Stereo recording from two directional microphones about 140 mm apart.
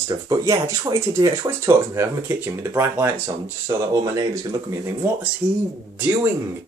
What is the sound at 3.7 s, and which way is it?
Speech, 30° right (ahead or behind).